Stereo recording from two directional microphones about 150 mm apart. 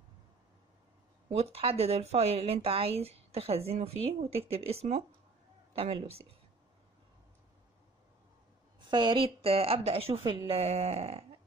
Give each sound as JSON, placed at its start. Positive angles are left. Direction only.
{"t": 1.3, "sound": "a woman's voice", "side_deg": -40}
{"t": 8.9, "sound": "a woman's voice", "side_deg": -30}